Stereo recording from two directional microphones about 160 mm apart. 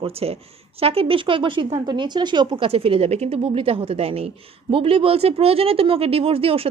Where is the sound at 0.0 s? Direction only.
40° right (ahead or behind).